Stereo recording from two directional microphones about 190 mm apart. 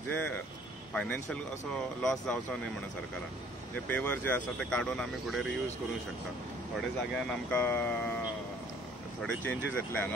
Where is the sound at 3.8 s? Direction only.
10° left (ahead or behind).